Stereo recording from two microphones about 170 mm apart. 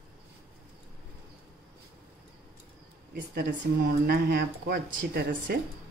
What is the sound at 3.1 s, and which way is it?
A woman's voice, 65° right (ahead or behind).